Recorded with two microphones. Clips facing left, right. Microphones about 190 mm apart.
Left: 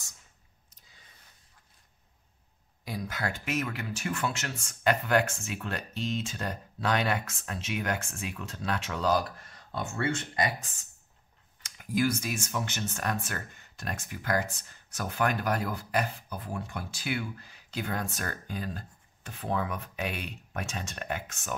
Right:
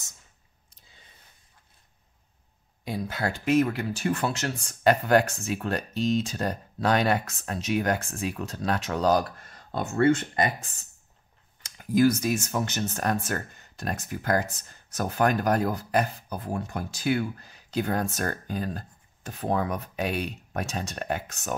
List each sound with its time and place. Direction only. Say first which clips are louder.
0.7 s a sound: right 3 dB; 25° right (ahead or behind)
2.8 s speech: right 5 dB; 30° right (ahead or behind); by 10.7 s 50° right (ahead or behind)
11.6 s speech: right 7 dB; 40° right (ahead or behind)